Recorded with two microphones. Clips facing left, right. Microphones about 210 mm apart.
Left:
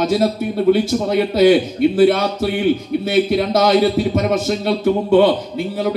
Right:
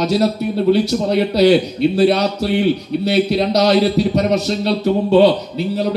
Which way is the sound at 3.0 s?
50° left (ahead or behind).